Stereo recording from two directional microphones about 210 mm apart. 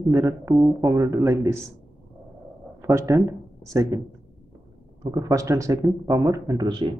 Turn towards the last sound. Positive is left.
turn(degrees=-25)  # may be behind; listen again after turning